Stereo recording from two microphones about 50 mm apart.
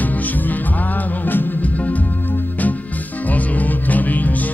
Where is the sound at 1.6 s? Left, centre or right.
Left.